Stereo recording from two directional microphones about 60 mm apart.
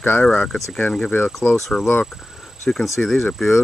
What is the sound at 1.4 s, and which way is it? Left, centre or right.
Speech, left.